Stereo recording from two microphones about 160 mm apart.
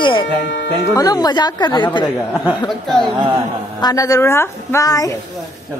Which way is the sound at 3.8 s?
20° left (ahead or behind).